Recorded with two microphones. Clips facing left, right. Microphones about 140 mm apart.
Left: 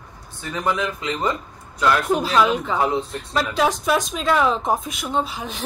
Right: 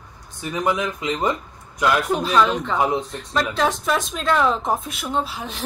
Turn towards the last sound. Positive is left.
turn(degrees=0)  # may be behind; listen again after turning